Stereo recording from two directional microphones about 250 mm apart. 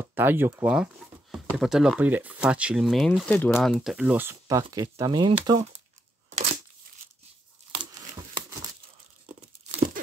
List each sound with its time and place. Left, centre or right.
0.0 s speech: centre
7.7 s crumpling: centre